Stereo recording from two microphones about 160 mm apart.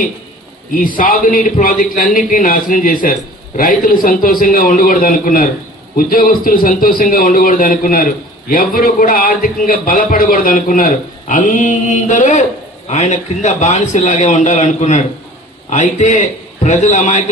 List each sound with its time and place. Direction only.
0.7 s a man's voice: 60° left (ahead or behind)